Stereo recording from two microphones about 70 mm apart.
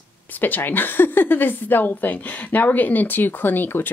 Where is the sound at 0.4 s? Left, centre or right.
Left.